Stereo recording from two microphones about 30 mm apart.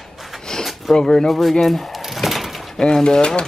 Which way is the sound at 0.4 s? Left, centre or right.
Left.